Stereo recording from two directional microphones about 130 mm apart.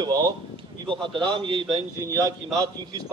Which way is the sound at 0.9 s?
40° right (ahead or behind).